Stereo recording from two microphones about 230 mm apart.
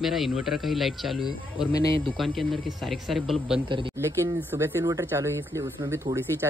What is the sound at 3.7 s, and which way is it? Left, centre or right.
A man's voice, centre.